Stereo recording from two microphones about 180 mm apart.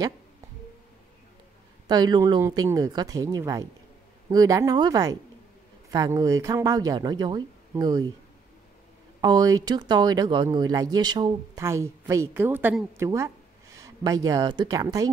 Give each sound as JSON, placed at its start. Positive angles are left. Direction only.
{"t": 1.9, "sound": "speech", "side_deg": -25}
{"t": 9.2, "sound": "speech", "side_deg": -20}